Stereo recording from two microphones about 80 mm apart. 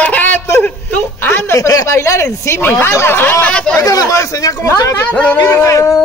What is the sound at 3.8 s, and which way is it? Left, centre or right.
Speech, left.